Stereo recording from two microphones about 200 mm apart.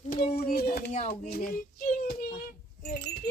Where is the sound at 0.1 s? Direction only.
50° left (ahead or behind).